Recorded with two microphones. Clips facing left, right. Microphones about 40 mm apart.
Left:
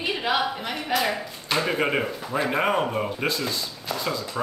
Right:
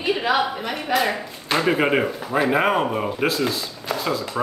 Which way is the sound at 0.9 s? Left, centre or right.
Centre.